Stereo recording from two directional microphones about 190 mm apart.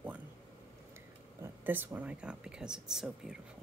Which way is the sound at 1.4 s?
10° right (ahead or behind).